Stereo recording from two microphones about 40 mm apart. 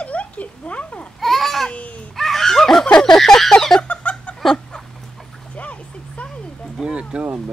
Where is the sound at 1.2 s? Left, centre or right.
Centre.